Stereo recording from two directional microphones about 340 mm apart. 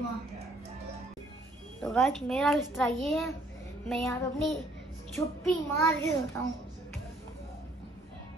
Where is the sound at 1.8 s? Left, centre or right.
Centre.